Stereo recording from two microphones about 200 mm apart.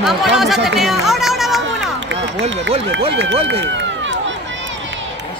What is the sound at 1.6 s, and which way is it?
Run, 65° right (ahead or behind).